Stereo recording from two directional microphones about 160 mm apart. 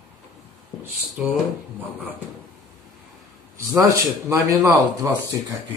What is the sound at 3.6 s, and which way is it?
A man's voice, 20° right (ahead or behind).